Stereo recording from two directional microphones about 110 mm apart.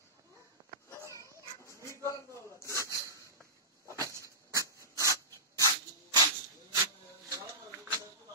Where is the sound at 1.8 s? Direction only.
25° left (ahead or behind).